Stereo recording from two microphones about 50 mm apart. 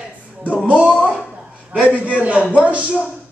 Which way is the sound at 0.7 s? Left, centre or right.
Right.